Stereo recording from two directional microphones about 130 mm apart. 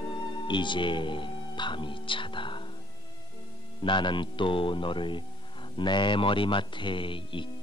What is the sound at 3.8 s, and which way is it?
Speech, 40° left (ahead or behind).